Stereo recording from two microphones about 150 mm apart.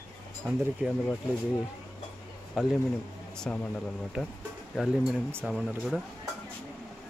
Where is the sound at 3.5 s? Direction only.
10° left (ahead or behind).